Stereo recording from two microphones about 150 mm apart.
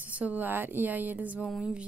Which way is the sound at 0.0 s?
10° right (ahead or behind).